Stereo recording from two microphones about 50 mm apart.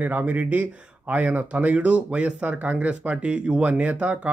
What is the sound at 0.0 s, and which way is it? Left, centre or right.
Speech, right.